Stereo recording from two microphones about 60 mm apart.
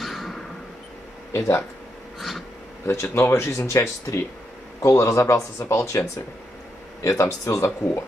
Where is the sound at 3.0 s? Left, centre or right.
Left.